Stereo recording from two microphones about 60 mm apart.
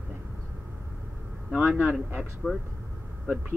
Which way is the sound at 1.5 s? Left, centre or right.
Right.